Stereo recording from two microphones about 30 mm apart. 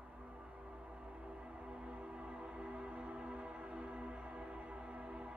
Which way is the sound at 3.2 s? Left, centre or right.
Right.